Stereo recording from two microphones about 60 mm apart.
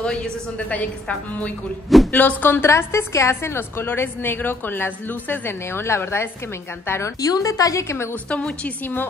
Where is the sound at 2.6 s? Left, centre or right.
Left.